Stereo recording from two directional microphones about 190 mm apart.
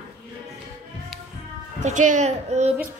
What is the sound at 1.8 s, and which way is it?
Speech, 40° right (ahead or behind).